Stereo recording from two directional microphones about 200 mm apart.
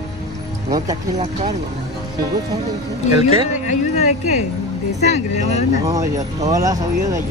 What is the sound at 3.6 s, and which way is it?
Speech, 35° left (ahead or behind).